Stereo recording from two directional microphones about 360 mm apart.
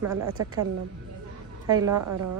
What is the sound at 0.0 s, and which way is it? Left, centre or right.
Speech, right.